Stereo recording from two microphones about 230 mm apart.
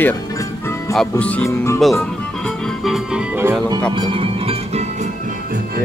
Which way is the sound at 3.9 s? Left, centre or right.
Right.